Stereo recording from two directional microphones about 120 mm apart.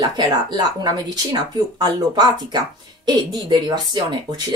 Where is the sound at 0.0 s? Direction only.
35° right (ahead or behind).